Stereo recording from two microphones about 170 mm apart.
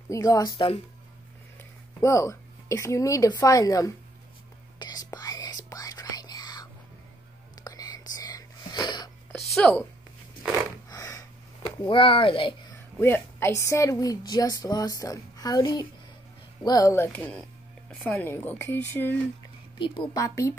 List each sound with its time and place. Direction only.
0.1 s a woman's voice: 20° left (ahead or behind)
4.7 s whispering: 25° left (ahead or behind)
9.5 s a woman's voice: 5° left (ahead or behind)
10.9 s a sound: 20° left (ahead or behind)
13.0 s a woman's voice: 15° left (ahead or behind)
20.2 s a woman's voice: 20° left (ahead or behind)